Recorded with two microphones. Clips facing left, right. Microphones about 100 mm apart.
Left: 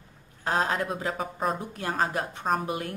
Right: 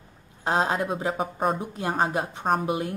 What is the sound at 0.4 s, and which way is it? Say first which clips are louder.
Speech: right 2 dB; 20° right (ahead or behind).